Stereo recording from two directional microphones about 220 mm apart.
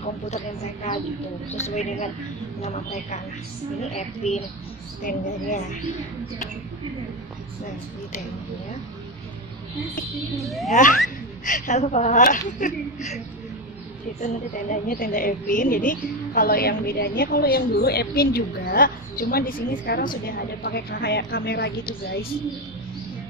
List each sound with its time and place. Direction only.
1.5 s a woman's voice: 30° left (ahead or behind)
10.3 s speech: centre (ahead or behind)
10.7 s a woman's voice: 35° left (ahead or behind)
14.2 s a woman's voice: 35° left (ahead or behind)